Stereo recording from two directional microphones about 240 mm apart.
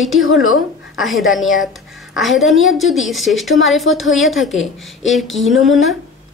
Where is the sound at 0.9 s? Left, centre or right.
Centre.